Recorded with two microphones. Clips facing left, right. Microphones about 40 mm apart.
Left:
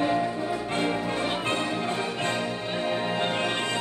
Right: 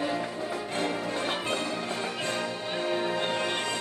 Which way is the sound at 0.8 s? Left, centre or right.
Left.